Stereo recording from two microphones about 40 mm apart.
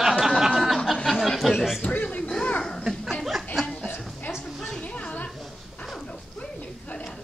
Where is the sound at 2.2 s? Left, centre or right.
Left.